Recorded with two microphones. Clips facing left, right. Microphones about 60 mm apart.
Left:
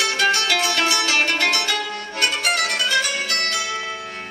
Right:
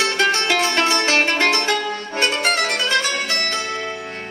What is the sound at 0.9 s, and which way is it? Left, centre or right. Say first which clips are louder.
Music: right 3 dB; right.